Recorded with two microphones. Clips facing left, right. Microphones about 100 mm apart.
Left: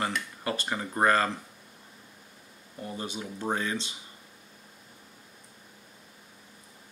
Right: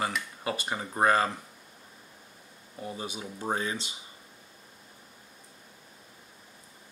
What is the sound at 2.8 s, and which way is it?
Speech, 15° right (ahead or behind).